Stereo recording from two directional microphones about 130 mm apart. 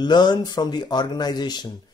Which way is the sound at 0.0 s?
35° left (ahead or behind).